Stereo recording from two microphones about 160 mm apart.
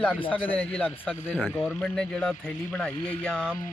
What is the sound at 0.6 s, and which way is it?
Speech, 10° left (ahead or behind).